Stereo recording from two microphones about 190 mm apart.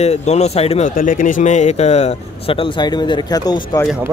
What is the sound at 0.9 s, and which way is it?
Speech, 45° left (ahead or behind).